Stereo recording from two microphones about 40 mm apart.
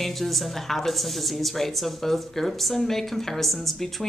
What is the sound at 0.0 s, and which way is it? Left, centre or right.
A woman's voice, centre.